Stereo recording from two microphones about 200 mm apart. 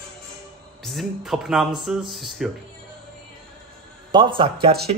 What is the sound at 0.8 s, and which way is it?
Speech, centre (ahead or behind).